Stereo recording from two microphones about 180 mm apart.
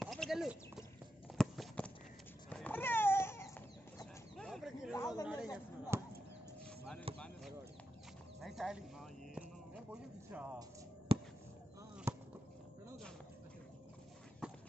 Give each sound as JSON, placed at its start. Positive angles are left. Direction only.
{"t": 0.0, "sound": "clip-clop", "side_deg": 0}
{"t": 1.4, "sound": "walk", "side_deg": 5}
{"t": 2.5, "sound": "cat", "side_deg": 10}
{"t": 4.4, "sound": "a sound", "side_deg": 0}
{"t": 4.9, "sound": "chatter", "side_deg": 20}
{"t": 5.3, "sound": "a sound", "side_deg": -5}
{"t": 5.9, "sound": "basketball bounce", "side_deg": -15}
{"t": 7.1, "sound": "basketball bounce", "side_deg": -30}
{"t": 8.4, "sound": "a sound", "side_deg": 0}
{"t": 11.1, "sound": "basketball bounce", "side_deg": -30}
{"t": 12.1, "sound": "chop", "side_deg": -15}
{"t": 14.4, "sound": "clip-clop", "side_deg": -5}